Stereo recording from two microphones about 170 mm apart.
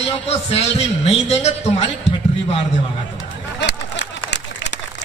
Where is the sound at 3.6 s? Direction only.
85° left.